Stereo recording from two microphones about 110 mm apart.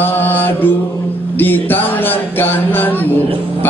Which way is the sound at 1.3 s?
20° left (ahead or behind).